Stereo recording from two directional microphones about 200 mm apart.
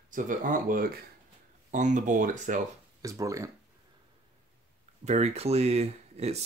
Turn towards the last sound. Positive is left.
turn(degrees=-30)  # may be behind; listen again after turning